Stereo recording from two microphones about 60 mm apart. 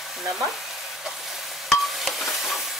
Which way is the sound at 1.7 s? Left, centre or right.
Centre.